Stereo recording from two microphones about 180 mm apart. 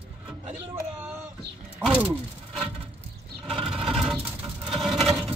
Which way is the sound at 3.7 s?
5° right (ahead or behind).